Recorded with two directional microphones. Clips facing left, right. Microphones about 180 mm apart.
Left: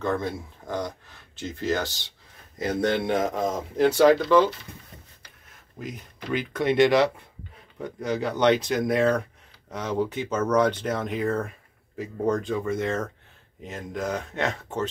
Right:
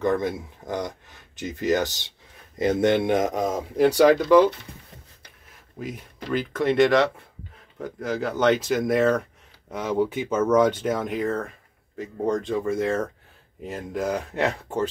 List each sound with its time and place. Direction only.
0.0 s speech: 15° right (ahead or behind)
5.8 s speech: 5° right (ahead or behind)